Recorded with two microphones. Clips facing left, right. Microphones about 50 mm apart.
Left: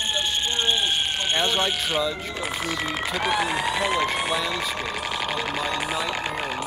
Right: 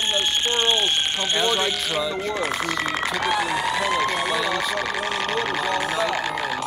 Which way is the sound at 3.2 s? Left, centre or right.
Centre.